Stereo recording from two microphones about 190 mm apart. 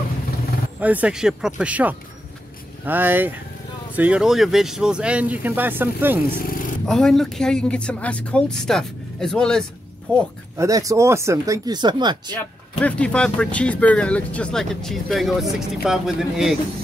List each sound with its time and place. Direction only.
0.7 s speech: 10° right (ahead or behind)
6.3 s a sound: 45° left (ahead or behind)
6.9 s speech: centre (ahead or behind)
10.6 s speech: 15° right (ahead or behind)
12.4 s speech: 5° left (ahead or behind)